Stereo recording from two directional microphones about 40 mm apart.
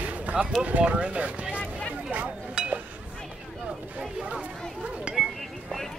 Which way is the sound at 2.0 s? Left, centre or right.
Right.